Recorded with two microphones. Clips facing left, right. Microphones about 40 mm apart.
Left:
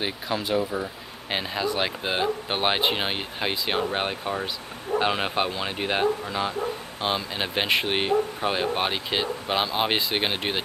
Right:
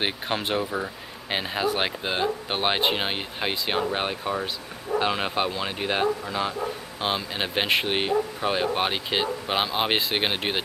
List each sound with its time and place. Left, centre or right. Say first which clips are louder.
0.0 s speech: right 1 dB; right
1.3 s speech: right 1 dB; centre
2.0 s speech: left 1 dB; centre
7.0 s speech: even; centre